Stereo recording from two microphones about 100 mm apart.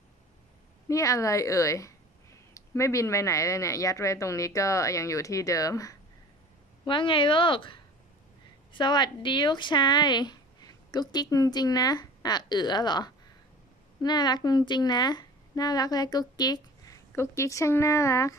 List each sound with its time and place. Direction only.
0.8 s a woman's voice: 35° left (ahead or behind)
6.8 s a woman's voice: 55° left (ahead or behind)
8.7 s a woman's voice: 45° left (ahead or behind); by 18.3 s 30° left (ahead or behind)